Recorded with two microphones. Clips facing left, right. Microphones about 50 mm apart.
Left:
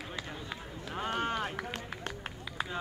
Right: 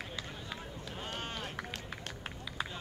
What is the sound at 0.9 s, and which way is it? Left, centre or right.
Run, left.